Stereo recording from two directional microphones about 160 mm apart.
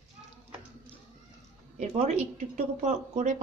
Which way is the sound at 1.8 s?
45° right (ahead or behind).